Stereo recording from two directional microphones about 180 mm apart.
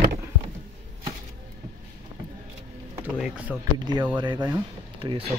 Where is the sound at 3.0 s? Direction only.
10° right (ahead or behind).